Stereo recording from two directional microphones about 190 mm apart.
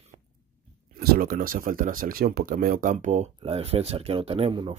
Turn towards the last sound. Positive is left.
turn(degrees=-30)  # may be behind; listen again after turning